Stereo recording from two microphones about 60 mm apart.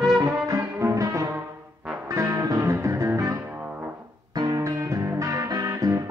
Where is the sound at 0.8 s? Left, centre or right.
Right.